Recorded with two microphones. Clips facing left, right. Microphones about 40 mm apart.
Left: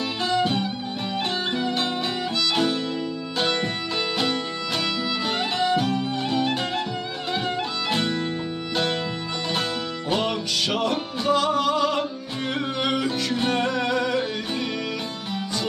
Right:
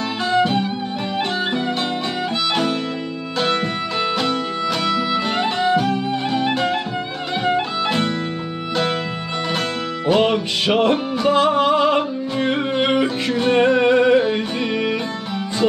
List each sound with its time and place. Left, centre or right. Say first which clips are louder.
0.4 s music: right 7 dB; centre
2.5 s music: right 2 dB; centre
5.1 s music: right 5 dB; centre
7.4 s music: right 7 dB; centre
10.1 s music: right 7 dB; right
13.6 s music: right 9 dB; right